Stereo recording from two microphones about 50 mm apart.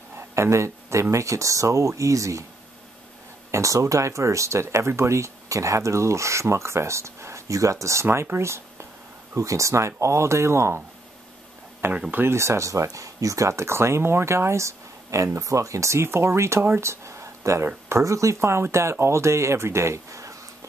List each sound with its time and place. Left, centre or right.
0.3 s speech: right
1.1 s speech: right
3.5 s speech: right
9.3 s speech: right
11.8 s speech: right
12.2 s speech: right